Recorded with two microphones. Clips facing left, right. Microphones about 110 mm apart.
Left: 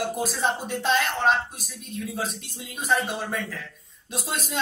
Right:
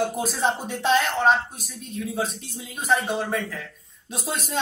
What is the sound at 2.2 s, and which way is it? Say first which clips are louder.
Speech: right 1 dB; centre (ahead or behind).